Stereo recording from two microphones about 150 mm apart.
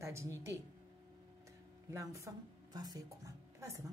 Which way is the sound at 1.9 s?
20° right (ahead or behind).